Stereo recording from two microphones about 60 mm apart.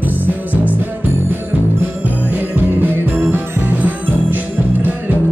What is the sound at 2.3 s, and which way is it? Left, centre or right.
Music, right.